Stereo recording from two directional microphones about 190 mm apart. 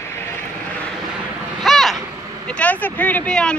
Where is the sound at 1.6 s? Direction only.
Centre (ahead or behind).